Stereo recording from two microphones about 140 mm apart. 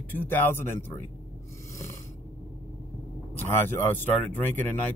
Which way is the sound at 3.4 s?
15° left (ahead or behind).